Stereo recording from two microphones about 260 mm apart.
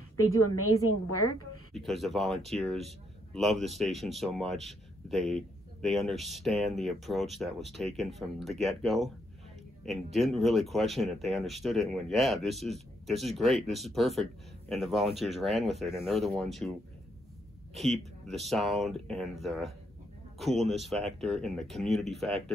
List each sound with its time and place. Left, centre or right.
0.2 s a woman's voice: left
1.7 s a man's voice: centre
10.1 s a man's voice: centre
17.7 s a man's voice: centre